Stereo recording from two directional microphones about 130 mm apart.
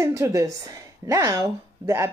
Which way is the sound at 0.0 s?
25° right (ahead or behind).